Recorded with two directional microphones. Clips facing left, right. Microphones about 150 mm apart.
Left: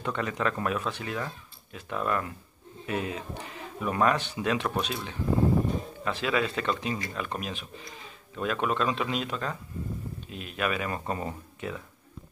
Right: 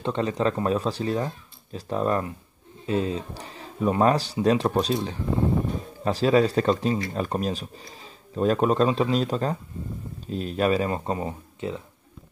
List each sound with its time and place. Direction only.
0.0 s speech: 30° right (ahead or behind)
6.0 s speech: 35° right (ahead or behind)